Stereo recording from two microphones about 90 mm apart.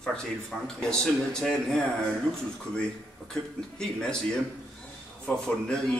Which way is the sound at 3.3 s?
10° left (ahead or behind).